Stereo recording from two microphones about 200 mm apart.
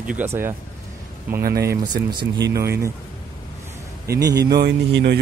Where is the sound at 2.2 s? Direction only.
55° right (ahead or behind).